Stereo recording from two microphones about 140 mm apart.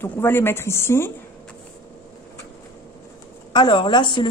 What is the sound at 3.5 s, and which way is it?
Speech, 35° left (ahead or behind).